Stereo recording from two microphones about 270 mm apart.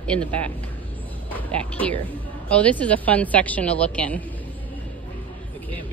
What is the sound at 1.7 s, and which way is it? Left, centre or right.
A woman's voice, centre.